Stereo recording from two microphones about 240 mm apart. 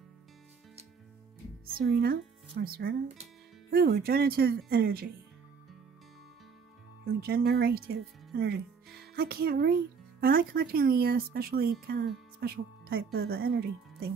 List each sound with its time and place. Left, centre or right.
1.8 s speech: right
7.1 s speech: right
9.0 s music: right
10.2 s speech: right